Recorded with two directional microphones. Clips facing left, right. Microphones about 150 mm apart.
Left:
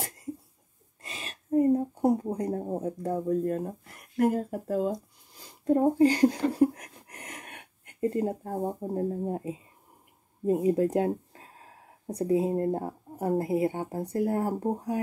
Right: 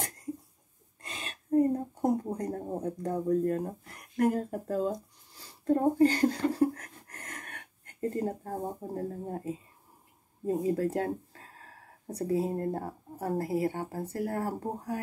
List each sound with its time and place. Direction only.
1.0 s speech: 5° left (ahead or behind)
6.0 s a sound: 10° left (ahead or behind)
10.4 s speech: 20° left (ahead or behind)